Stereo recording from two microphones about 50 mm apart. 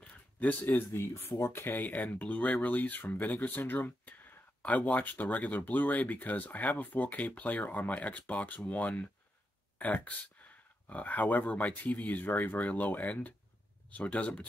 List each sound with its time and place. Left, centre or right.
0.0 s a sound: left
0.7 s speech: left
1.9 s speech: left